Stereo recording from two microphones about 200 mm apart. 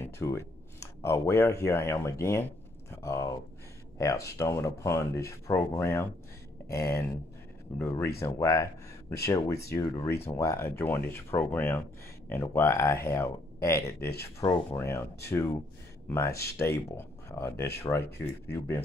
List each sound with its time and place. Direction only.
0.0 s speech: 15° left (ahead or behind)